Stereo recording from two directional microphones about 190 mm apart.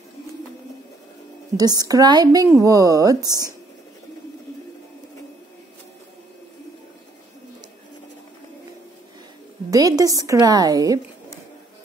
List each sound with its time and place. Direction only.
1.6 s speech: 20° right (ahead or behind)
9.7 s a woman's voice: 20° right (ahead or behind)